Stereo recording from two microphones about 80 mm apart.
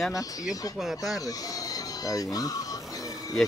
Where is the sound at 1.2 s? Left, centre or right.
Left.